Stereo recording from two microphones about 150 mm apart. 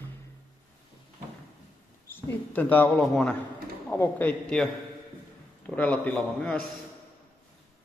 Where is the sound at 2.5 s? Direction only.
10° left (ahead or behind).